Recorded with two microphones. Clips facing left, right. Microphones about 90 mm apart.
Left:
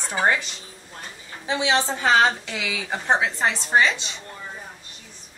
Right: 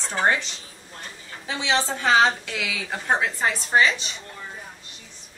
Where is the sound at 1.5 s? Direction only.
20° left (ahead or behind).